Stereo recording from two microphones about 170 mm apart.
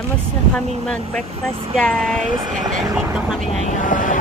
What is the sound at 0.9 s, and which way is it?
Speech, 5° left (ahead or behind).